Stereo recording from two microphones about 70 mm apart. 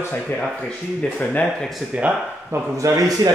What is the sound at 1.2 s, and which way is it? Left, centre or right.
Speech, left.